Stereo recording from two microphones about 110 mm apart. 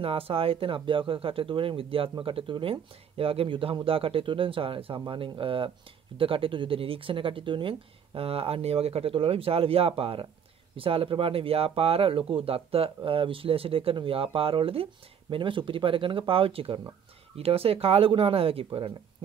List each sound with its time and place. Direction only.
0.0 s speech: 60° right (ahead or behind)